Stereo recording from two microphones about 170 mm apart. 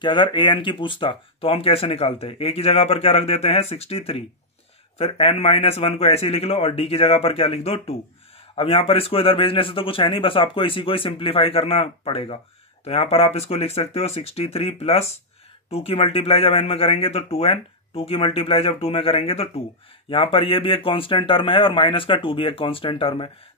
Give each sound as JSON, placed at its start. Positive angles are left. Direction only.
{"t": 0.0, "sound": "speech", "side_deg": 25}